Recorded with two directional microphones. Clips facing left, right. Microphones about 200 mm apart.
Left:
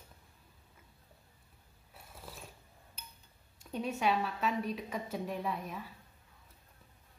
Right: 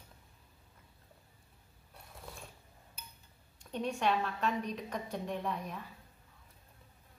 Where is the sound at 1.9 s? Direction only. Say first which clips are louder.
Even; 5° left (ahead or behind).